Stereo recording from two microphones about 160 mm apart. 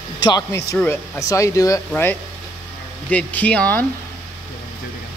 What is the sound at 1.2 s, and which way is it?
Speech, 20° left (ahead or behind).